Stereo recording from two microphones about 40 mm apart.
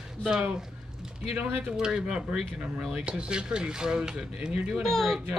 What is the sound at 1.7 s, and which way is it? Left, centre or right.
Speech, centre.